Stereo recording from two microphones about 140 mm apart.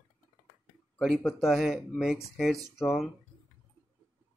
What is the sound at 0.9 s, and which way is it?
Speech, centre (ahead or behind).